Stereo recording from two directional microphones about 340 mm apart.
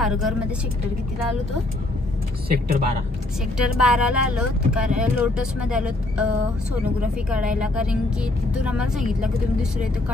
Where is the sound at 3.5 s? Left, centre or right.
Centre.